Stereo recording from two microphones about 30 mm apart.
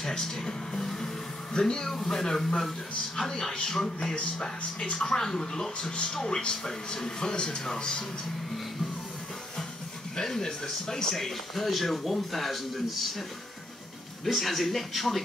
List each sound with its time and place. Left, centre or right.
0.0 s speech: centre
10.1 s speech: centre
11.1 s speech: centre
14.2 s speech: centre